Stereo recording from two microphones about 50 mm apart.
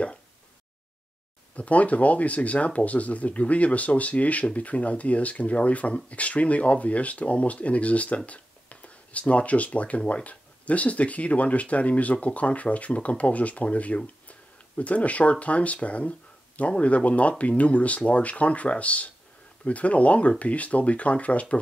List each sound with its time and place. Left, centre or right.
1.5 s speech: left